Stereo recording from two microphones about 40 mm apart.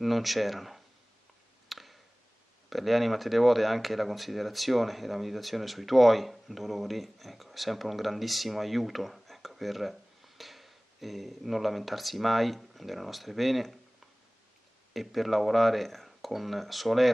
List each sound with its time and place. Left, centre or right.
0.0 s speech: centre
1.7 s a sound: centre
2.7 s speech: centre
15.0 s speech: centre